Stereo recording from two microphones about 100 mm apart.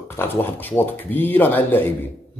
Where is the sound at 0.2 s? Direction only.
20° left (ahead or behind).